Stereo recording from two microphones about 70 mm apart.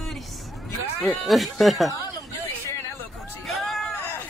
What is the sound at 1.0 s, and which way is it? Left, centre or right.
Speech, centre.